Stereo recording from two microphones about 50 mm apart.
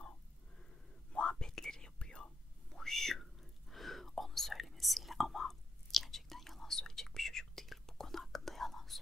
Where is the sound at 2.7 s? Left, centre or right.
Centre.